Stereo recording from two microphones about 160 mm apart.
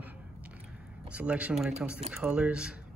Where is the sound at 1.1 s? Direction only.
10° right (ahead or behind).